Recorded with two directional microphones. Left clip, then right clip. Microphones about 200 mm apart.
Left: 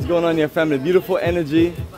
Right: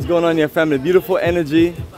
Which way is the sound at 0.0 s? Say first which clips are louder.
Right 2 dB; 15° right (ahead or behind).